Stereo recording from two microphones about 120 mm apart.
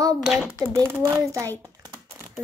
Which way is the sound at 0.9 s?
20° right (ahead or behind).